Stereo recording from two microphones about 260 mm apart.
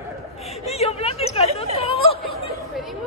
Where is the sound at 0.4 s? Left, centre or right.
Left.